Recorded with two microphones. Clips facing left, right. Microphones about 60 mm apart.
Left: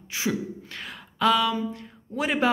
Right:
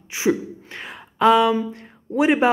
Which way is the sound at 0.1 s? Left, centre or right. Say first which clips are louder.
Right 7 dB; right.